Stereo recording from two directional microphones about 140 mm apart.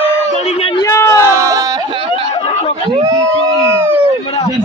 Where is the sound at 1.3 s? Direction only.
25° right (ahead or behind).